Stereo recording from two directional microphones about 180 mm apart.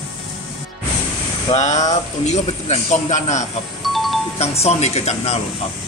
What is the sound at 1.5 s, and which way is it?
Speech, 40° left (ahead or behind).